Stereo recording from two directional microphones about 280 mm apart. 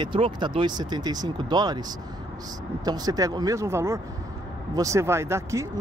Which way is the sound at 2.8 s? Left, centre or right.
Centre.